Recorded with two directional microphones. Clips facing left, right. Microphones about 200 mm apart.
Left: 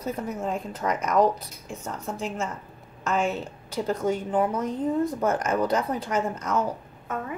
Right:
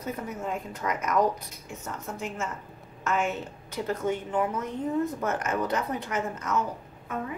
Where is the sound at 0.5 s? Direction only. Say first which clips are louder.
Left 2 dB; 35° left (ahead or behind).